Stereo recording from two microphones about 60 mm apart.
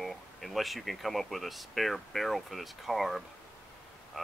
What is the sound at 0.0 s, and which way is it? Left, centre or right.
Speech, centre.